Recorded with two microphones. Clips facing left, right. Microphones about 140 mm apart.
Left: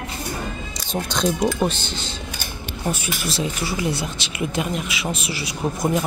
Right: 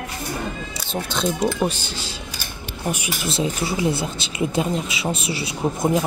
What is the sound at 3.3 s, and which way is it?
Speech, 25° right (ahead or behind).